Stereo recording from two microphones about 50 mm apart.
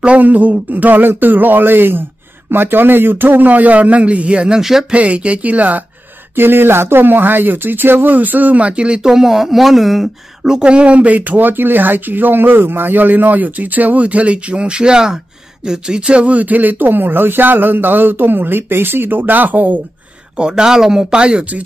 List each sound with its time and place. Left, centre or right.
0.0 s speech: right
4.6 s speech: centre
4.9 s speech: right
6.3 s speech: right; by 10.0 s centre
10.4 s speech: centre; by 19.8 s right
20.3 s speech: centre